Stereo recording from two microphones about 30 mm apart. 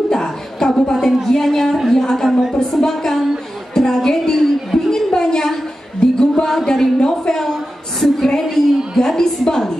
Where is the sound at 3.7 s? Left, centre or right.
Centre.